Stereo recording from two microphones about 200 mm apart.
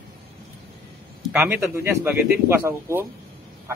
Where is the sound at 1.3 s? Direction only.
10° right (ahead or behind).